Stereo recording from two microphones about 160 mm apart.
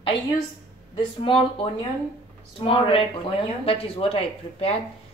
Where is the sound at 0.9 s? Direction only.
35° left (ahead or behind).